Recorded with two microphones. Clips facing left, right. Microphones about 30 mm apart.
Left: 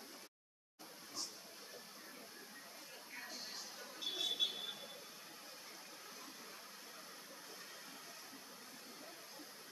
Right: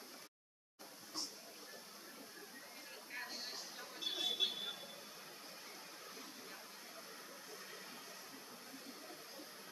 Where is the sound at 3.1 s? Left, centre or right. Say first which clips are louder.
Right 3 dB; right; by 4.8 s centre.